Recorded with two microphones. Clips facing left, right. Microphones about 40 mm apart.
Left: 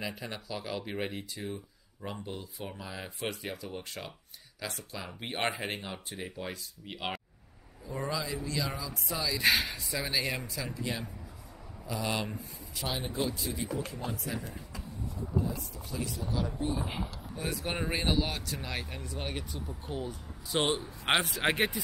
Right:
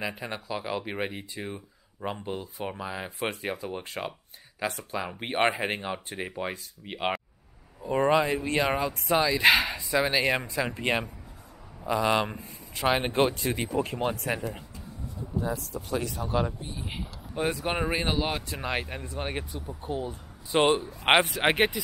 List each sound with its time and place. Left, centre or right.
0.0 s speech: right
7.8 s speech: right
9.3 s speech: right
9.6 s a sound: centre
9.9 s speech: right
11.9 s speech: right
12.3 s speech: right
13.0 s speech: right
16.2 s speech: right
17.0 s a sound: centre
17.5 s speech: centre
19.5 s speech: centre
20.1 s speech: right